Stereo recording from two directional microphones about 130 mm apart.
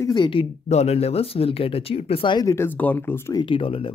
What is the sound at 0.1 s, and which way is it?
Speech, 40° left (ahead or behind).